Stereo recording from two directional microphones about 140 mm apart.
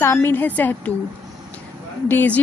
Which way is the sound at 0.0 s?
15° left (ahead or behind).